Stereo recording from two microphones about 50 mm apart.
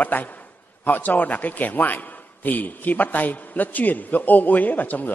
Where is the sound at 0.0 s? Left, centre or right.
Left.